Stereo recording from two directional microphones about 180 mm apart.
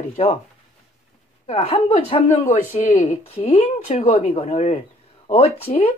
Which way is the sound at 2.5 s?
40° left (ahead or behind).